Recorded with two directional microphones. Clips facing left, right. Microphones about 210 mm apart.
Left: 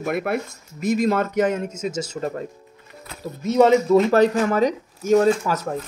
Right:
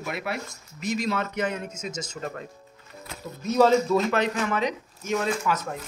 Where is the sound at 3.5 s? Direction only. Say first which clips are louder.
Left 4 dB; 20° left (ahead or behind).